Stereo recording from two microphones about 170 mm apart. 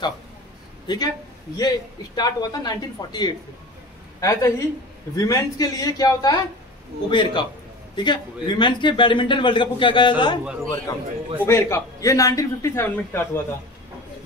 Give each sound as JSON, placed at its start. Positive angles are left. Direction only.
{"t": 0.8, "sound": "a man's voice", "side_deg": 25}
{"t": 2.1, "sound": "a man's voice", "side_deg": 25}
{"t": 10.4, "sound": "a man's voice", "side_deg": -5}
{"t": 11.4, "sound": "a man's voice", "side_deg": 15}